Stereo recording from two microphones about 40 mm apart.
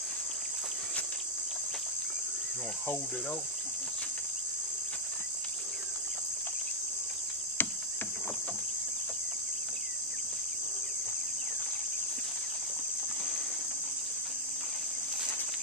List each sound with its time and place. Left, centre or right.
7.6 s insect: left